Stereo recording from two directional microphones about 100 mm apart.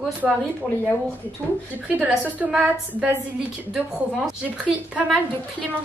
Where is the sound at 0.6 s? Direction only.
15° left (ahead or behind).